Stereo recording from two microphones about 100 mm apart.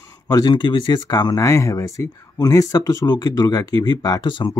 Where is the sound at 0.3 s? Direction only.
40° left (ahead or behind).